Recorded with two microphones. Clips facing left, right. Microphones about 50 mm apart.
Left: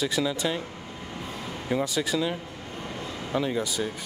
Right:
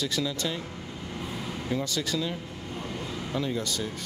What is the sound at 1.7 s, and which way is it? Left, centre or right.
Speech, centre.